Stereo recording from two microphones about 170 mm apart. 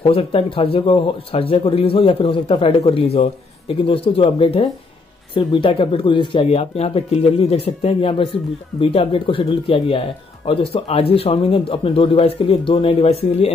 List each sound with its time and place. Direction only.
0.0 s speech: 35° left (ahead or behind)